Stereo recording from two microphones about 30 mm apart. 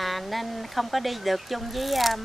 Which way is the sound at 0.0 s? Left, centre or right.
Centre.